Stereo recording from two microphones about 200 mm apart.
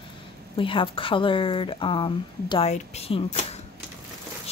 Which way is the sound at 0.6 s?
25° left (ahead or behind).